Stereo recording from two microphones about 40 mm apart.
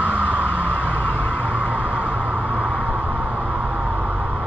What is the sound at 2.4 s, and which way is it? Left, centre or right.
Vehicle, left.